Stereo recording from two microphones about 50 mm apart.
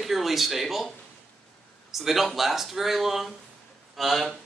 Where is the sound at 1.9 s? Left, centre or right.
Centre.